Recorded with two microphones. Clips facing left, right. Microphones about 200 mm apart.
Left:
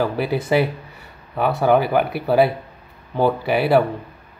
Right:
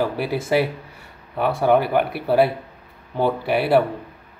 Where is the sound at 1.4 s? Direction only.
Centre (ahead or behind).